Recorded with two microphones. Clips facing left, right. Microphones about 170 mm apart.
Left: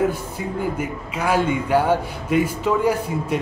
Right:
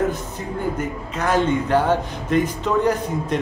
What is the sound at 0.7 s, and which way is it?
A man's voice, 10° left (ahead or behind).